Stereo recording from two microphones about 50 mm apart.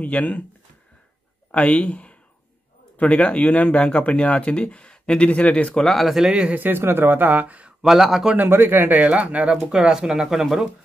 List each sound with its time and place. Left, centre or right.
0.0 s speech: left
1.5 s speech: left
5.8 s speech: centre
6.3 s speech: right
6.6 s speech: right
7.8 s speech: centre
8.4 s speech: right
9.7 s speech: centre